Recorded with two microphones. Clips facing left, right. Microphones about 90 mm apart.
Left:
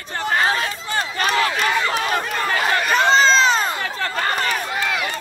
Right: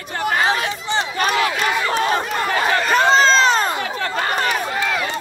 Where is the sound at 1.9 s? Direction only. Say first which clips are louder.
Right 3 dB; 35° right (ahead or behind).